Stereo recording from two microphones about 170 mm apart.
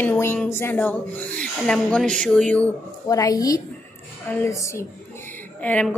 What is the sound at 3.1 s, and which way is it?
A woman's voice, 20° left (ahead or behind).